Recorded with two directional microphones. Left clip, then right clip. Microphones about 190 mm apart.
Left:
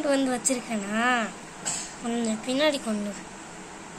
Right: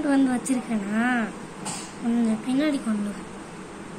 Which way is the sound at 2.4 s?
65° left (ahead or behind).